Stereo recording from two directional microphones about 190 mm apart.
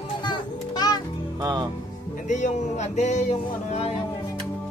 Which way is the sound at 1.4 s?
20° right (ahead or behind).